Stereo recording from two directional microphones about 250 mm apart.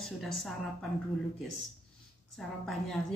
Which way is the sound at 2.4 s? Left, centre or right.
Centre.